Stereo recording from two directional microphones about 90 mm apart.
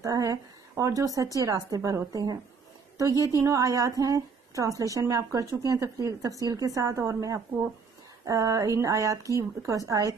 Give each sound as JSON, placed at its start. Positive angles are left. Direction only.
{"t": 0.0, "sound": "speech", "side_deg": -40}
{"t": 3.0, "sound": "speech", "side_deg": -40}